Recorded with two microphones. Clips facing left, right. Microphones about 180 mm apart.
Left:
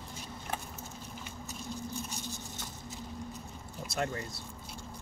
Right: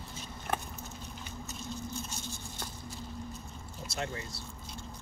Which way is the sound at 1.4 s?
15° left (ahead or behind).